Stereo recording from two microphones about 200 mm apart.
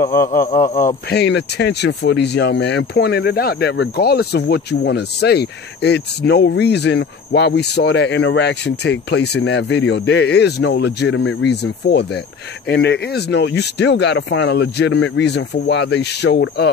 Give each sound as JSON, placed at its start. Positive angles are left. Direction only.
{"t": 0.0, "sound": "speech", "side_deg": 50}
{"t": 1.2, "sound": "speech", "side_deg": 55}